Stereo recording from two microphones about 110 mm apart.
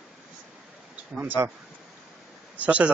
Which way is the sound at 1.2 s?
15° right (ahead or behind).